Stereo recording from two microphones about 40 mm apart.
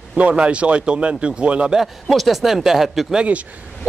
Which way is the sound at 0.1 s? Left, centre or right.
Right.